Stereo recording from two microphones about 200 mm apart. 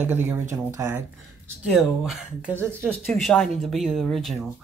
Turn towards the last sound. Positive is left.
turn(degrees=0)  # may be behind; listen again after turning